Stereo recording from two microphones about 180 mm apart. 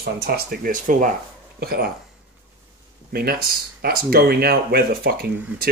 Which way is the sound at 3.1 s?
60° right (ahead or behind).